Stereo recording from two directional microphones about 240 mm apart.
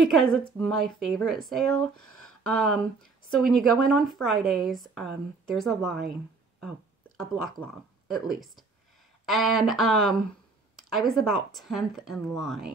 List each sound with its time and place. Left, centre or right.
0.0 s a woman's voice: centre
7.6 s a woman's voice: centre